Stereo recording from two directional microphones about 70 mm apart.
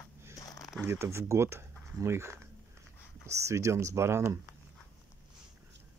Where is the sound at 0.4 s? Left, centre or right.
Left.